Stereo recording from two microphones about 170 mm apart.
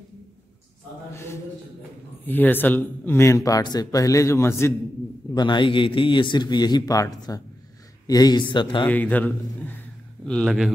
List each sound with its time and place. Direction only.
1.1 s a man's voice: 15° left (ahead or behind)
5.3 s a man's voice: 25° left (ahead or behind)
8.8 s a man's voice: 10° left (ahead or behind)